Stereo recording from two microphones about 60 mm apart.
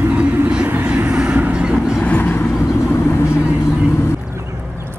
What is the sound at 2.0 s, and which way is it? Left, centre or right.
Vehicle, left.